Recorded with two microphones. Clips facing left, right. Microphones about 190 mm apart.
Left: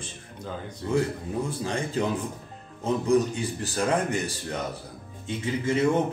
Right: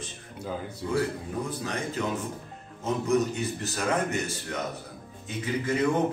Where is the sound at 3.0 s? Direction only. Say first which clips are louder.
Left 2 dB; 30° left (ahead or behind).